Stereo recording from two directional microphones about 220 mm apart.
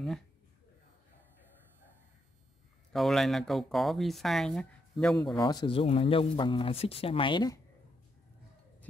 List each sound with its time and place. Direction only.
2.9 s speech: centre (ahead or behind)
5.4 s speech: 20° left (ahead or behind)